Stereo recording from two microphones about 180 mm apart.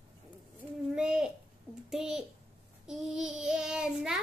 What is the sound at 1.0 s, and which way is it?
Babbling, 5° right (ahead or behind).